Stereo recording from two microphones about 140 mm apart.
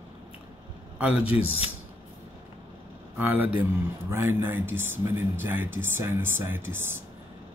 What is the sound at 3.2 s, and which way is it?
Speech, 10° right (ahead or behind).